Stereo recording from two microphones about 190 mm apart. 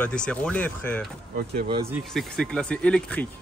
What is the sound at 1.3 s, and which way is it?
Speech, 55° right (ahead or behind).